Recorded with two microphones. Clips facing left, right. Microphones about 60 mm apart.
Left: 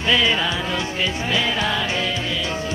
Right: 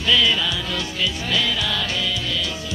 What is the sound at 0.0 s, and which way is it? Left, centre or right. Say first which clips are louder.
Music: left 1 dB; left.